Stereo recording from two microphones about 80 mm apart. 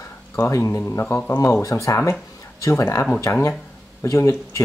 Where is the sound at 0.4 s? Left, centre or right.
Left.